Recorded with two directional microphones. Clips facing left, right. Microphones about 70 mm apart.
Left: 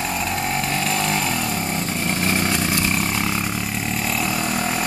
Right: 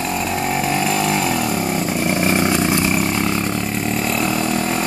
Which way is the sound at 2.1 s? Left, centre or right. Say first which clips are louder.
Right 4 dB; centre.